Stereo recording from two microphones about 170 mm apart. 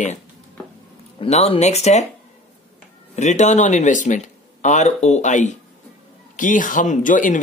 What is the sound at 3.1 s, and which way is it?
Speech, 45° left (ahead or behind).